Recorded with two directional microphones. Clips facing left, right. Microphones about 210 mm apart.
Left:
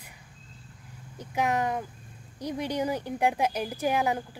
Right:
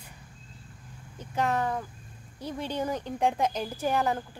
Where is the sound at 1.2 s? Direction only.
15° left (ahead or behind).